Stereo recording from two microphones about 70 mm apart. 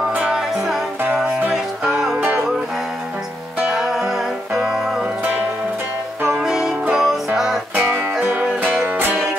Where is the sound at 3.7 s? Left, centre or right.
Centre.